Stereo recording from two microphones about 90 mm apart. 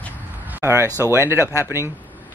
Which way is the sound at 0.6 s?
30° right (ahead or behind).